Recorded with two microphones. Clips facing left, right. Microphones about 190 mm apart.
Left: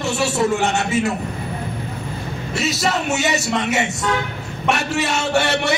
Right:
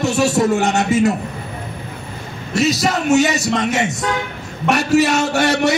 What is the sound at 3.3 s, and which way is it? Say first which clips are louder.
Speech: right 2 dB; 40° right (ahead or behind).